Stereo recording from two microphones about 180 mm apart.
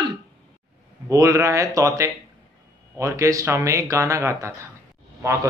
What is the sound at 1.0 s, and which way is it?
Speech, 15° right (ahead or behind).